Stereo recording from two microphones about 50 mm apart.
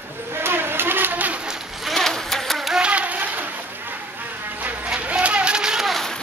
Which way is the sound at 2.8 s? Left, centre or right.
Right.